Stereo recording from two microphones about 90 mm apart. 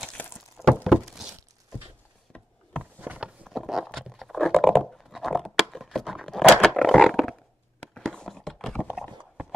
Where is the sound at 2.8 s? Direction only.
15° right (ahead or behind).